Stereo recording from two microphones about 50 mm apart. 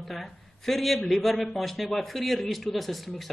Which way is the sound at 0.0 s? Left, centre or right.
Centre.